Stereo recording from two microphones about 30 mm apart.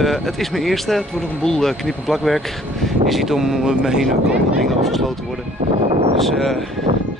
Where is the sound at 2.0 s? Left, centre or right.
Centre.